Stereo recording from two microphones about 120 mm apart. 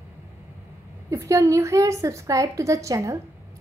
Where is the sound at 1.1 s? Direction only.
25° right (ahead or behind).